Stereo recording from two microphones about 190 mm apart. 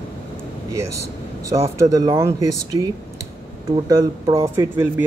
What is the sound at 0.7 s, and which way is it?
Speech, 15° right (ahead or behind).